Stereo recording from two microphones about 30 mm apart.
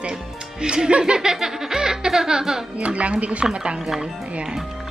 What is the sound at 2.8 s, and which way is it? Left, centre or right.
A woman's voice, right.